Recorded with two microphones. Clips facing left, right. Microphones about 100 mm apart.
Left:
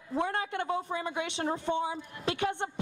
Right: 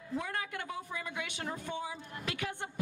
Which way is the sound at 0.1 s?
30° left (ahead or behind).